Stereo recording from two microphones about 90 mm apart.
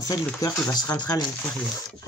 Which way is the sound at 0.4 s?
45° left (ahead or behind).